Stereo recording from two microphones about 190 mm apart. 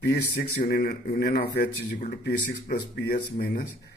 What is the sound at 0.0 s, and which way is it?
Speech, 60° left (ahead or behind).